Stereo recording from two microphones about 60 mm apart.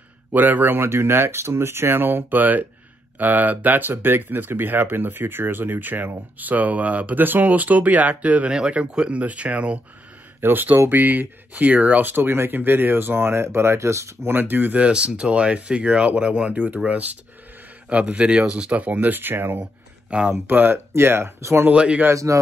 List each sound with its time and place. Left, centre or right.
0.3 s speech: right
10.4 s speech: right
14.3 s speech: right; by 18.8 s centre
18.8 s speech: right
19.6 s a sound: centre
20.4 s speech: right
21.7 s a man's voice: centre
22.1 s speech: right